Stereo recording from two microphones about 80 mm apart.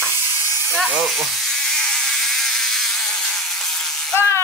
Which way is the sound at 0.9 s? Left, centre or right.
Centre.